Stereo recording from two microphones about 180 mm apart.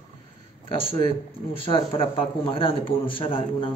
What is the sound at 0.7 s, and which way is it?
A man's voice, 30° left (ahead or behind).